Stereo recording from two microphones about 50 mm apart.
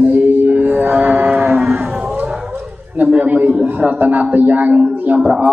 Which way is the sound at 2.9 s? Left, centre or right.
Right.